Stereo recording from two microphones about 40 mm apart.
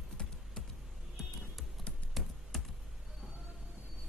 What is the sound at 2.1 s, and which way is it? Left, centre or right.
Typing, centre.